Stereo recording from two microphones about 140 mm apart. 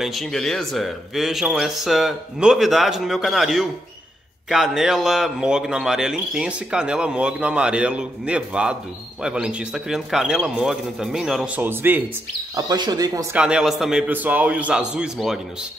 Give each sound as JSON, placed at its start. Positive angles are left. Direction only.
{"t": 0.0, "sound": "a man's voice", "side_deg": 0}
{"t": 12.5, "sound": "speech", "side_deg": -30}
{"t": 13.3, "sound": "a man's voice", "side_deg": -5}